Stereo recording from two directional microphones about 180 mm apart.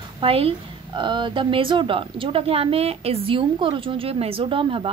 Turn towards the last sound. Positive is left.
turn(degrees=-30)  # may be behind; listen again after turning